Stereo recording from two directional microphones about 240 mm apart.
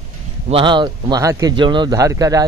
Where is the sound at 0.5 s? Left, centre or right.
Right.